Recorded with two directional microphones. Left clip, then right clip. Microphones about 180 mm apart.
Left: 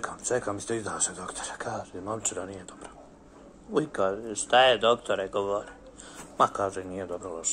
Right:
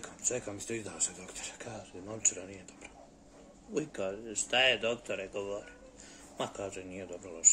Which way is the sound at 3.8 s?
10° right (ahead or behind).